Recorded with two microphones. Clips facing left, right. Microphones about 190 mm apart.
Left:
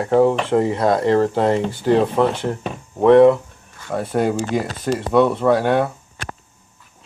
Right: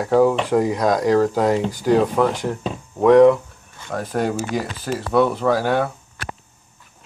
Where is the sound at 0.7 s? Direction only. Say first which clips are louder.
Left 1 dB; 5° left (ahead or behind).